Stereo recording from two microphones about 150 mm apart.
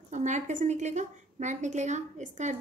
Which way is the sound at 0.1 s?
55° right (ahead or behind).